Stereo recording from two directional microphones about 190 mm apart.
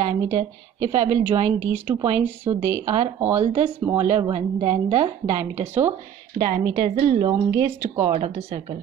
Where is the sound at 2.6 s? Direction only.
15° right (ahead or behind).